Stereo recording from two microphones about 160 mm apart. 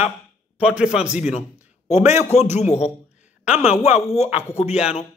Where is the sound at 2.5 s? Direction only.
45° left (ahead or behind).